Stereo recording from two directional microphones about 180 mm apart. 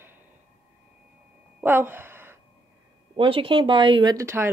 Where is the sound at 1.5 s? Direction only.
10° right (ahead or behind).